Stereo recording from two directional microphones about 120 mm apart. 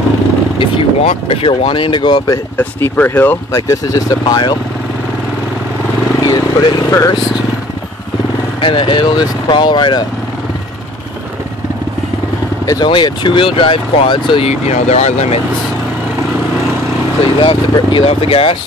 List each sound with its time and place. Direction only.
0.6 s speech: 50° left (ahead or behind); by 2.4 s 35° left (ahead or behind)
2.5 s speech: 15° left (ahead or behind)
3.5 s speech: 25° left (ahead or behind)
6.2 s speech: 30° left (ahead or behind)
8.5 s speech: 45° left (ahead or behind)
12.6 s speech: 35° left (ahead or behind)
14.5 s speech: 70° left (ahead or behind)
17.5 s speech: 55° left (ahead or behind)